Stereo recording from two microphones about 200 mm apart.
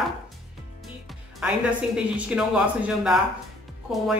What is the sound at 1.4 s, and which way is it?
Speech, 5° right (ahead or behind).